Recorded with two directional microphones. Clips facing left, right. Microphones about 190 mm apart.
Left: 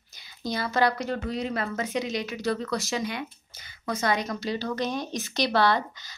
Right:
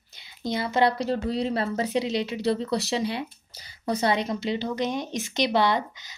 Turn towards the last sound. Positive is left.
turn(degrees=-20)  # may be behind; listen again after turning